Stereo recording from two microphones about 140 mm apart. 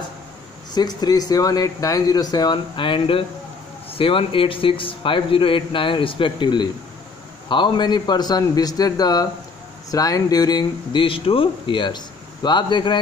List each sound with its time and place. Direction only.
0.7 s a man's voice: 30° left (ahead or behind)